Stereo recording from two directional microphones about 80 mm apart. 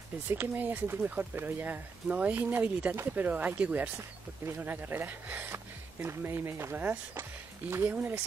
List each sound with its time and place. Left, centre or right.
0.3 s speech: right